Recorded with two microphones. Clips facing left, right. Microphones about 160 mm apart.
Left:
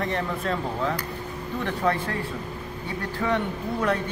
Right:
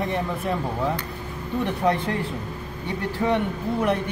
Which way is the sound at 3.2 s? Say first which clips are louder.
Right 2 dB; 15° right (ahead or behind).